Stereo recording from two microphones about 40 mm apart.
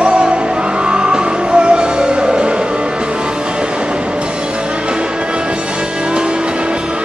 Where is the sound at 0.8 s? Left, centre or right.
Right.